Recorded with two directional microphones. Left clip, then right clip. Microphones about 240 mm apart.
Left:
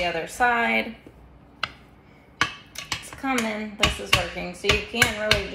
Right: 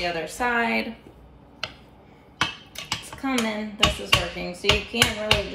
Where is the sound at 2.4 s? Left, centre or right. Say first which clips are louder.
Left 1 dB; centre.